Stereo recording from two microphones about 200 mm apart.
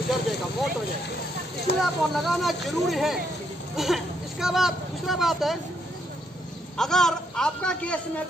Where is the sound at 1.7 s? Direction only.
55° left (ahead or behind).